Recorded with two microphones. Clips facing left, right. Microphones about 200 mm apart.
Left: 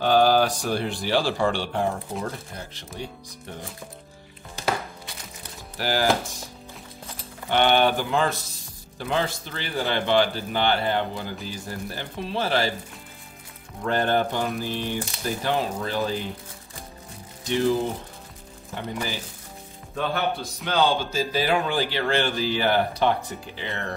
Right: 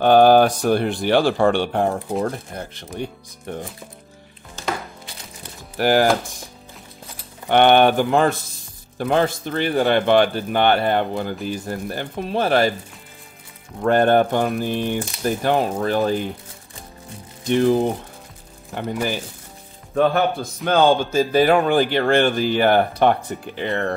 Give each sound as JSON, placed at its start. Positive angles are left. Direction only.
{"t": 0.0, "sound": "speech", "side_deg": -55}
{"t": 5.8, "sound": "speech", "side_deg": -55}
{"t": 7.4, "sound": "speech", "side_deg": -55}
{"t": 13.8, "sound": "speech", "side_deg": -55}
{"t": 17.5, "sound": "speech", "side_deg": -55}
{"t": 20.6, "sound": "speech", "side_deg": -50}